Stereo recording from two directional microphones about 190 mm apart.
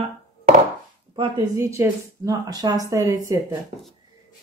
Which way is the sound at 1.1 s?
20° right (ahead or behind).